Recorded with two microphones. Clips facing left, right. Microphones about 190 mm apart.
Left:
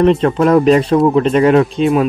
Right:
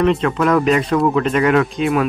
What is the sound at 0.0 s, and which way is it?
Speech, 35° left (ahead or behind).